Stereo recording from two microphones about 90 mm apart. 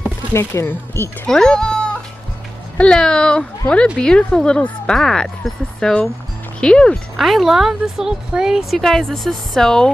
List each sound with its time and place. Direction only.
0.3 s speech: 30° left (ahead or behind)
1.2 s speech: 5° left (ahead or behind)
7.2 s speech: centre (ahead or behind)